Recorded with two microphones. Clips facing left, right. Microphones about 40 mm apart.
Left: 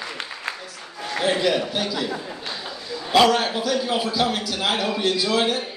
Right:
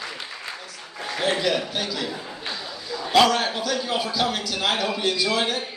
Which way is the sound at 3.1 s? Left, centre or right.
Centre.